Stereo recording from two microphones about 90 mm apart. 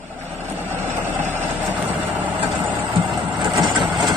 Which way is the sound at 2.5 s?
55° right (ahead or behind).